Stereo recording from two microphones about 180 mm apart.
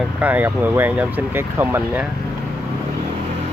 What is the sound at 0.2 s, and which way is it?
Speech, 10° right (ahead or behind).